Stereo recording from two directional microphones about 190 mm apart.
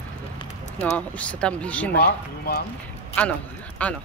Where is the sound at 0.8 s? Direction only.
5° left (ahead or behind).